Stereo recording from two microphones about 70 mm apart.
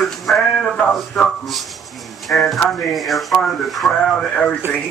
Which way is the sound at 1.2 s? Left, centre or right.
Centre.